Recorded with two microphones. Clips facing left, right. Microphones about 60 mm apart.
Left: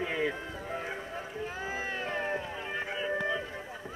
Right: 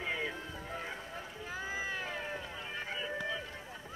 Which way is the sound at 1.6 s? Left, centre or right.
Left.